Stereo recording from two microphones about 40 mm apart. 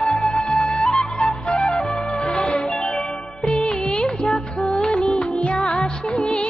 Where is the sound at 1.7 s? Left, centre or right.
Centre.